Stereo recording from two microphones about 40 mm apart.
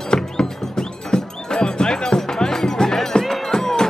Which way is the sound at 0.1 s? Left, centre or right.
Centre.